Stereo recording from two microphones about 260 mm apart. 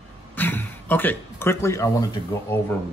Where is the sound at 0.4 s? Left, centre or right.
Centre.